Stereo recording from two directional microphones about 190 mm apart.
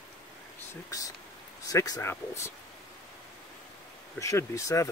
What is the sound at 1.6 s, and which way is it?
Speech, 20° left (ahead or behind).